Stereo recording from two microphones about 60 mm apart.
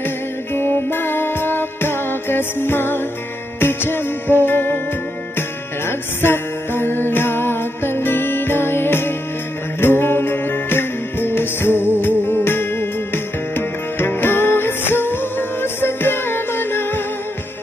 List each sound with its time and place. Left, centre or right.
0.6 s music: left
5.9 s music: left